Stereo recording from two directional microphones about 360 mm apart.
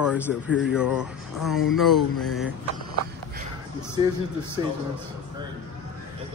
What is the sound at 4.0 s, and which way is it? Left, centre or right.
Speech, centre.